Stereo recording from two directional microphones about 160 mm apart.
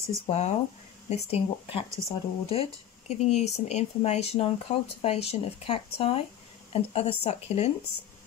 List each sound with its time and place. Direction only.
0.3 s speech: 45° left (ahead or behind)